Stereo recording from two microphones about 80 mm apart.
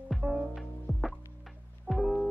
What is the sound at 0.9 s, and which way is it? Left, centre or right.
Music, centre.